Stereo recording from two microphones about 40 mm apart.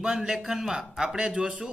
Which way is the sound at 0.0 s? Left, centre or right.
Centre.